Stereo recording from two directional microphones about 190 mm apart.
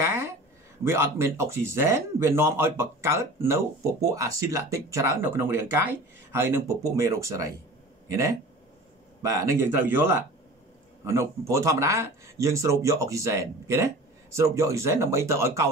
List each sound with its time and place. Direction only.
0.0 s a sound: 15° right (ahead or behind)
0.8 s speech: 15° right (ahead or behind)
9.3 s speech: 15° right (ahead or behind)